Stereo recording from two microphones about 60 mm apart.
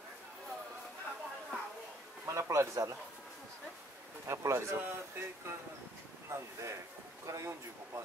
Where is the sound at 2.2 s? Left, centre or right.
Right.